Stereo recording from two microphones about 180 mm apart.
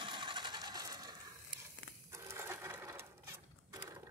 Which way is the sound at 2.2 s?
15° right (ahead or behind).